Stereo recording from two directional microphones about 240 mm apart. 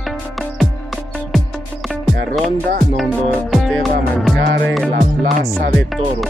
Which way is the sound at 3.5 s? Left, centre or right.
Centre.